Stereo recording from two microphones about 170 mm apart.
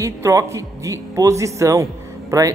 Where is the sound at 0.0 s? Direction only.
20° right (ahead or behind).